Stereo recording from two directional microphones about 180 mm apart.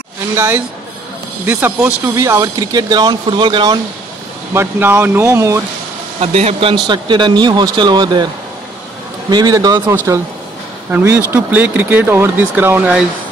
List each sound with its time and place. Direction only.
1.4 s speech: 10° right (ahead or behind)
4.6 s speech: 10° right (ahead or behind)
6.1 s speech: 35° right (ahead or behind)
9.3 s speech: 20° right (ahead or behind)
10.9 s speech: 10° right (ahead or behind)